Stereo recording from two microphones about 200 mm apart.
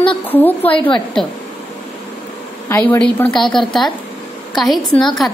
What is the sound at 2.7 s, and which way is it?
A woman's voice, 10° left (ahead or behind).